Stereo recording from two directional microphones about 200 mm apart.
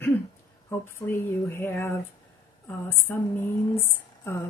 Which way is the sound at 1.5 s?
10° left (ahead or behind).